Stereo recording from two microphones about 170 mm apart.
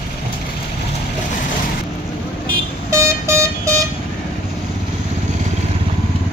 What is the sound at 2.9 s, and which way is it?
Vehicle, 15° right (ahead or behind).